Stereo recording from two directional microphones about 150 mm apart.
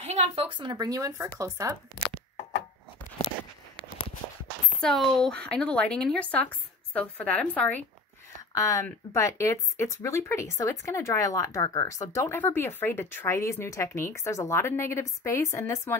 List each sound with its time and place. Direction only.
0.0 s speech: 35° right (ahead or behind); by 1.8 s 20° right (ahead or behind)
4.7 s speech: 5° left (ahead or behind)
8.5 s speech: 20° left (ahead or behind)